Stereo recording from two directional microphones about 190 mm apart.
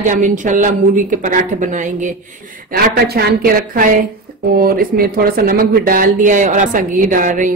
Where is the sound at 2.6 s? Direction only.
55° right (ahead or behind).